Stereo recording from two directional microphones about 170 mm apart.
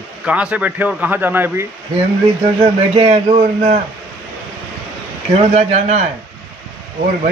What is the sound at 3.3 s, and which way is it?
Speech, 45° right (ahead or behind).